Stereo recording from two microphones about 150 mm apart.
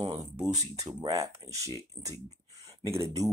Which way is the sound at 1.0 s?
20° right (ahead or behind).